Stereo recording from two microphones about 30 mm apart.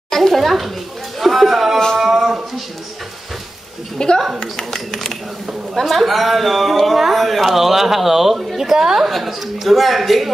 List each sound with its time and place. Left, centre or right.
0.1 s a child's voice: centre
1.2 s a sound: centre
4.0 s a woman's voice: left
4.7 s speech: centre
7.5 s a woman's voice: centre
9.1 s speech: centre